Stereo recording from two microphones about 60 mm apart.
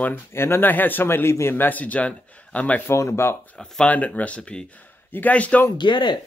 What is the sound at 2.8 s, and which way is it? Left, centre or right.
Speech, left.